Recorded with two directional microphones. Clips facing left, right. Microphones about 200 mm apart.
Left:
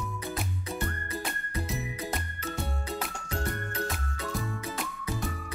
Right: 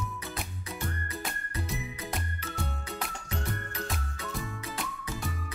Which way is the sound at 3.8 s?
Centre (ahead or behind).